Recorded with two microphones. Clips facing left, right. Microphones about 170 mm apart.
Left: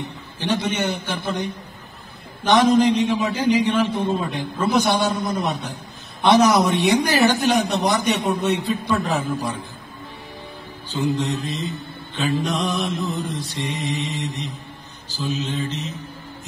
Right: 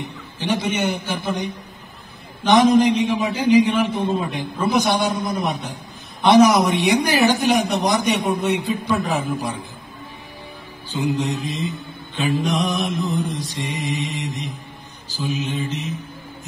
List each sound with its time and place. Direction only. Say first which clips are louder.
0.4 s speech: right 1 dB; 10° right (ahead or behind)
2.5 s speech: right 1 dB; 15° right (ahead or behind)
10.9 s speech: even; 10° right (ahead or behind)